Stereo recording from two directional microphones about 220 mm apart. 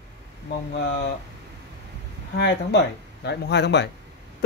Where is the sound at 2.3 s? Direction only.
50° left (ahead or behind).